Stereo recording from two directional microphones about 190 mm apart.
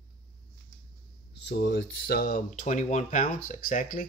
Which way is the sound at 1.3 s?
65° left (ahead or behind).